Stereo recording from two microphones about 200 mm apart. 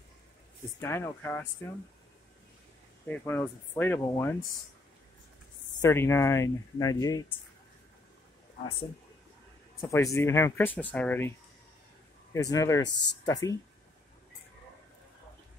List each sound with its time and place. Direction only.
0.7 s speech: 15° left (ahead or behind)
3.1 s speech: 10° left (ahead or behind)
5.8 s speech: 15° left (ahead or behind)
9.8 s speech: 15° left (ahead or behind)